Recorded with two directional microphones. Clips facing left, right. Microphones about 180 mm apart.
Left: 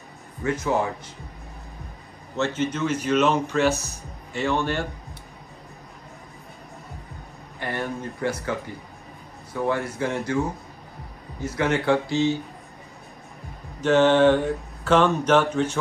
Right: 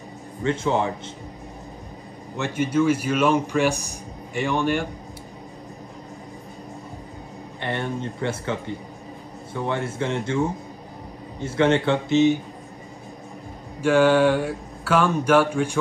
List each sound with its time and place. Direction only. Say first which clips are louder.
0.4 s a man's voice: right 1 dB; 25° right (ahead or behind)
2.3 s speech: right 3 dB; 15° right (ahead or behind)
7.6 s a man's voice: right 2 dB; 25° right (ahead or behind)
11.4 s a man's voice: right 3 dB; 25° right (ahead or behind)
13.7 s speech: even; 10° right (ahead or behind)